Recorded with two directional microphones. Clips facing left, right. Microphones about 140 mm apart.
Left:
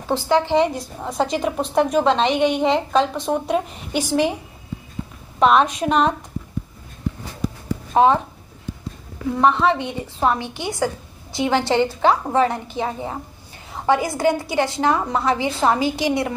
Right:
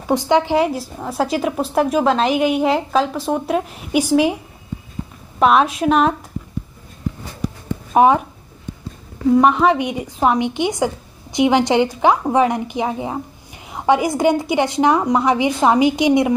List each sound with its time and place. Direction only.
0.1 s a woman's voice: 20° right (ahead or behind)
5.4 s a woman's voice: 5° right (ahead or behind)
7.9 s speech: 15° right (ahead or behind)
9.3 s a woman's voice: 15° right (ahead or behind)